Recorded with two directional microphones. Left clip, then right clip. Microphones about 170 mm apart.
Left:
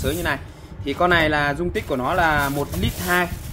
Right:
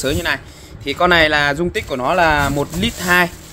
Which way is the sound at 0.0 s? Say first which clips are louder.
Right 5 dB; 65° right (ahead or behind).